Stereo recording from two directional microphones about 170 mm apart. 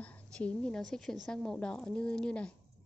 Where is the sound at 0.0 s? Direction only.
5° left (ahead or behind).